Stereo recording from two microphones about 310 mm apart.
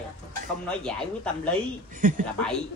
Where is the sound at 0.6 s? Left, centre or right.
Centre.